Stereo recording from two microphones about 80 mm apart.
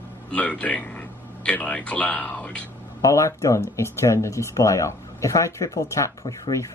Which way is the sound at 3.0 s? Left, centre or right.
Left.